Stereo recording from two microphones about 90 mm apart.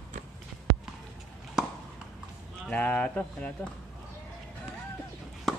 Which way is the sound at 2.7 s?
15° left (ahead or behind).